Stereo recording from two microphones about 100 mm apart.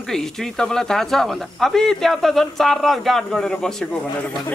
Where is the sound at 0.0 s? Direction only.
5° left (ahead or behind).